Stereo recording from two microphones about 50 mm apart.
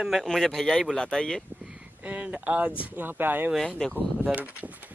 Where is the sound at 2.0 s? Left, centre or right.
Right.